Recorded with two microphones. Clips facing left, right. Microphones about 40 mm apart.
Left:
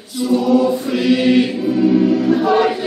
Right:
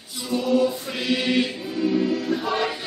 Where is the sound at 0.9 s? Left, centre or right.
Centre.